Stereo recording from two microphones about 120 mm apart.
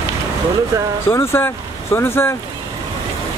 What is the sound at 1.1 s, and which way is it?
Speech, 20° left (ahead or behind).